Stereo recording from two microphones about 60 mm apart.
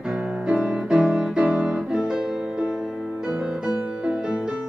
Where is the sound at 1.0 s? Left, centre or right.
Centre.